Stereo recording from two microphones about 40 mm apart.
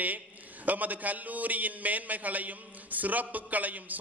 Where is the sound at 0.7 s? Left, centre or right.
Right.